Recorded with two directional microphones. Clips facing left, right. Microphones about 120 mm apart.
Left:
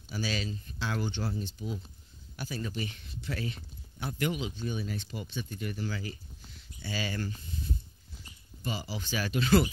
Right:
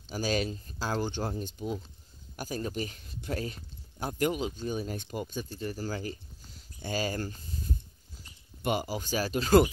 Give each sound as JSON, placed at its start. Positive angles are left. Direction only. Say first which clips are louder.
{"t": 0.1, "sound": "speech", "louder": "right 5 dB", "side_deg": -45}
{"t": 8.6, "sound": "speech", "louder": "right 6 dB", "side_deg": -50}